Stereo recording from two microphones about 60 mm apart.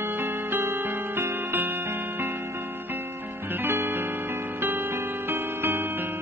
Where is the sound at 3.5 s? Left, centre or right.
Right.